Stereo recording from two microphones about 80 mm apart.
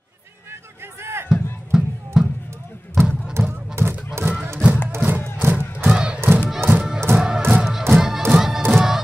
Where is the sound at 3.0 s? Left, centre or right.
Right.